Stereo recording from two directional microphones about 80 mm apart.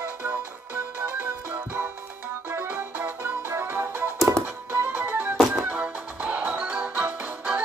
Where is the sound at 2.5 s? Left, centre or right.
Right.